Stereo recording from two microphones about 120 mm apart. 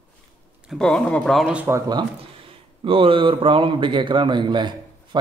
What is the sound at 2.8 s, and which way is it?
A man's voice, 50° right (ahead or behind).